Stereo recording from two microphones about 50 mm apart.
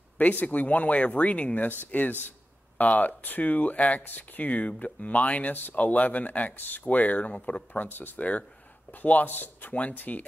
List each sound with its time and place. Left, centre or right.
0.2 s speech: left
8.2 s speech: left